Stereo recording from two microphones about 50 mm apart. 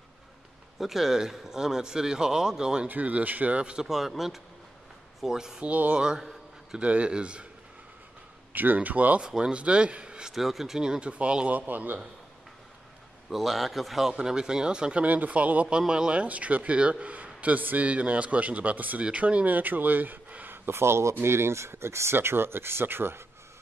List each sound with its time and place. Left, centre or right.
0.7 s speech: centre
2.9 s a man's voice: right
3.8 s speech: centre
5.6 s a man's voice: right
5.9 s a man's voice: centre
8.5 s speech: right
9.2 s a man's voice: centre
10.3 s speech: centre
10.8 s a man's voice: centre
11.5 s speech: right
13.3 s speech: centre
14.1 s a man's voice: centre; by 20.5 s right
20.5 s speech: right